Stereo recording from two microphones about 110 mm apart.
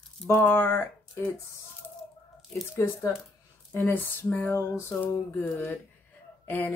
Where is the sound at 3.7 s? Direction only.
20° left (ahead or behind).